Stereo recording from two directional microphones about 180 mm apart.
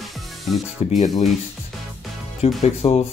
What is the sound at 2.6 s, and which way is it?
Speech, 35° left (ahead or behind).